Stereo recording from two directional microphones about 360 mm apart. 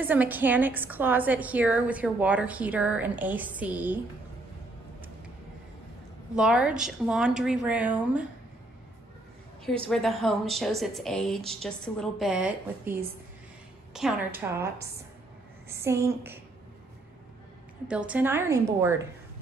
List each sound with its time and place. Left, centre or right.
0.0 s a woman's voice: centre
6.3 s a woman's voice: centre
9.8 s a woman's voice: centre
14.6 s a woman's voice: right
15.7 s a woman's voice: centre
17.8 s a woman's voice: centre